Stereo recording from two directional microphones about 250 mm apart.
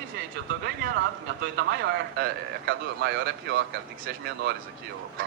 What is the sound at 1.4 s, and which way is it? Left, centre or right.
Speech, right.